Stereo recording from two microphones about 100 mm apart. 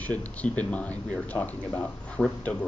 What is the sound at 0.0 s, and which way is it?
Speech, 15° left (ahead or behind).